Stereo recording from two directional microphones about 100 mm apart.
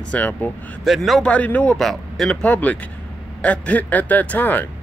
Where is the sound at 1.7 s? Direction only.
5° left (ahead or behind).